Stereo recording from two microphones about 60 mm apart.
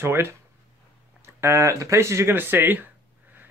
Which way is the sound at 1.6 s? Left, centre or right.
Right.